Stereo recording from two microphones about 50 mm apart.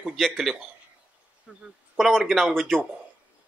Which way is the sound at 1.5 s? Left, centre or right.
Right.